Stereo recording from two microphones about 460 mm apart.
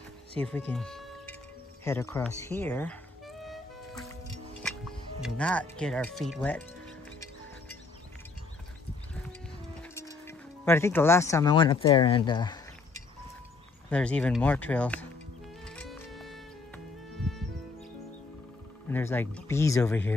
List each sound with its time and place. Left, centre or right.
0.4 s speech: centre
1.9 s music: centre
5.2 s speech: centre
9.9 s speech: centre
13.8 s speech: centre
15.6 s music: centre
18.9 s speech: centre